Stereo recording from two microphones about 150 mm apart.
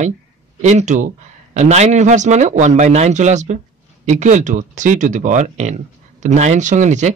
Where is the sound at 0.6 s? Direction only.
50° right (ahead or behind).